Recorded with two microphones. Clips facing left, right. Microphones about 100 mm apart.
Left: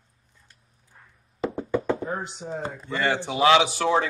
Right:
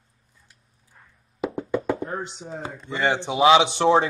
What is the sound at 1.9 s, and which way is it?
Speech, centre (ahead or behind).